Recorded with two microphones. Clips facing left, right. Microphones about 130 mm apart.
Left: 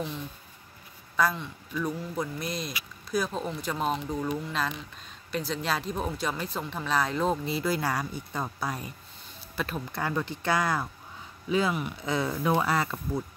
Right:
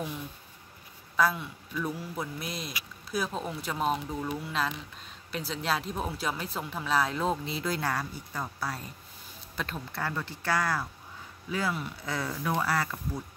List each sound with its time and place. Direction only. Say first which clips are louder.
1.1 s speech: even; 5° right (ahead or behind); by 12.9 s 20° left (ahead or behind)